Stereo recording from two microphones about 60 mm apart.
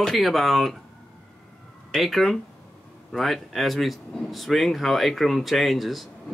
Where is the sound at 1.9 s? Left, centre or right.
Centre.